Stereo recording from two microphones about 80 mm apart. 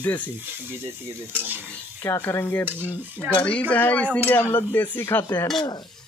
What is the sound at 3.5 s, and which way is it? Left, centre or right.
Speech, centre.